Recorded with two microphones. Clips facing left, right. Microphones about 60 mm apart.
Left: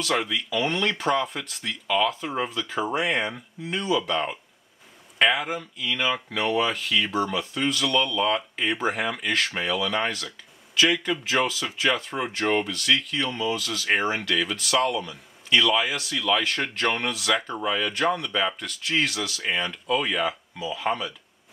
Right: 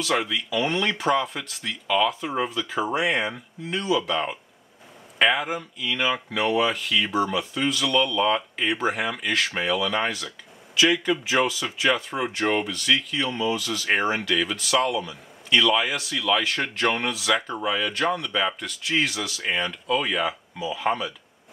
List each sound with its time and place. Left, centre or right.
0.0 s speech: centre
14.3 s speech: centre
19.4 s speech: centre